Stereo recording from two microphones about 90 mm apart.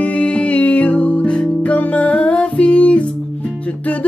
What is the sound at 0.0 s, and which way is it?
Music, 15° left (ahead or behind).